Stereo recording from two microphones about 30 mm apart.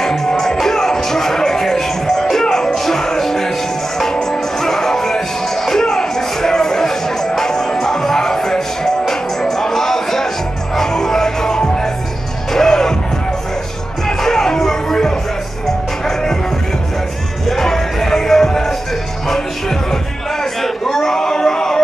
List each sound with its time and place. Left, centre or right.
0.0 s music: centre
2.7 s music: centre
14.0 s music: centre
17.5 s music: centre
20.6 s a sound: centre